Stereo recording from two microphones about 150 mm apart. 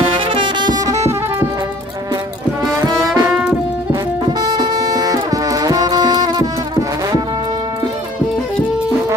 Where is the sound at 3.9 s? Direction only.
30° right (ahead or behind).